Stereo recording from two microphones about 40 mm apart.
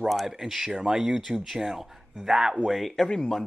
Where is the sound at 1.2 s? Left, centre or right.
Centre.